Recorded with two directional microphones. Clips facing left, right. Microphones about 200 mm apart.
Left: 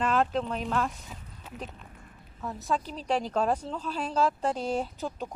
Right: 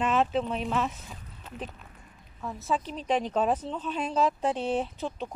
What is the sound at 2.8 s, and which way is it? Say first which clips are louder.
Speech: right 2 dB; 35° left (ahead or behind).